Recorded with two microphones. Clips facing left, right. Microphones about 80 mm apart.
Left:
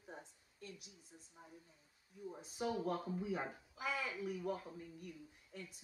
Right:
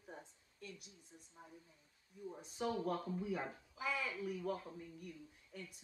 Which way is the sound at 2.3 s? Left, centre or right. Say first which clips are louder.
Even; centre.